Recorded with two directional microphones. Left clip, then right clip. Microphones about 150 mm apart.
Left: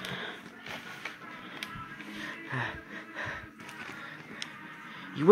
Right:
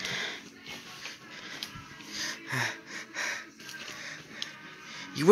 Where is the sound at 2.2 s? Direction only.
45° right (ahead or behind).